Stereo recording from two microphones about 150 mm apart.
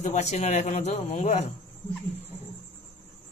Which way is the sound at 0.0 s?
50° left (ahead or behind).